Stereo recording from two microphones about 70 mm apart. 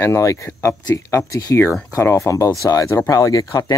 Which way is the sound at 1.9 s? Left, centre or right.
Left.